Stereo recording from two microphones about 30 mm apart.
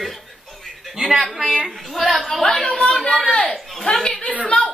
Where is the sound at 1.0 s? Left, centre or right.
Right.